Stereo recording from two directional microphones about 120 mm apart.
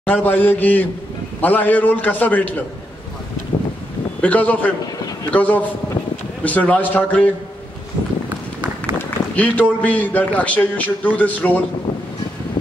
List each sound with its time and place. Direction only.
0.0 s a man's voice: 15° left (ahead or behind)
4.2 s a man's voice: 10° left (ahead or behind)
8.9 s a man's voice: 10° left (ahead or behind)